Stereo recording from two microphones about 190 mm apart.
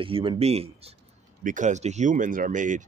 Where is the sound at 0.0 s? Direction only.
25° right (ahead or behind).